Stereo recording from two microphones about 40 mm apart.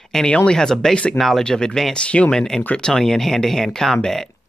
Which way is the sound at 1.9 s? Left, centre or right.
Left.